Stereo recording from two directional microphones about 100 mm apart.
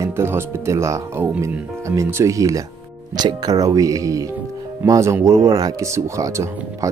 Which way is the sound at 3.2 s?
45° right (ahead or behind).